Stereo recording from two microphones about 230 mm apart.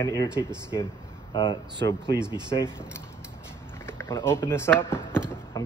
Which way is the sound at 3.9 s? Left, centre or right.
Centre.